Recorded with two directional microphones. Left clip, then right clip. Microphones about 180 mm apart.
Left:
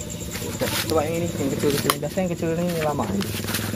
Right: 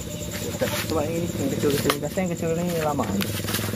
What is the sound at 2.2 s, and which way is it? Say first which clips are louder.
Speech: left 2 dB; 40° left (ahead or behind).